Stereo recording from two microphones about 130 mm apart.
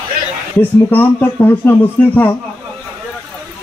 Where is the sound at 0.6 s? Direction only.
15° left (ahead or behind).